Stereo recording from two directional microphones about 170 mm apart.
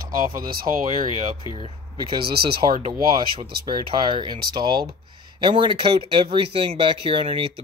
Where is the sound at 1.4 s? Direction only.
30° left (ahead or behind).